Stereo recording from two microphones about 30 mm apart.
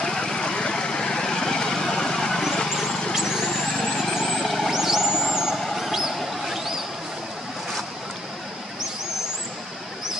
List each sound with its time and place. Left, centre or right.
0.0 s vehicle: centre
3.2 s vehicle: centre
3.5 s vehicle: centre
4.6 s vehicle: centre
5.7 s a sound: centre